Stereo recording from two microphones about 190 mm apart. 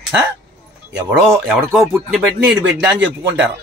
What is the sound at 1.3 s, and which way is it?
Speech, centre (ahead or behind).